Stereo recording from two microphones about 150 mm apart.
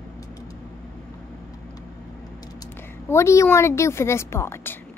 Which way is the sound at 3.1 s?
20° left (ahead or behind).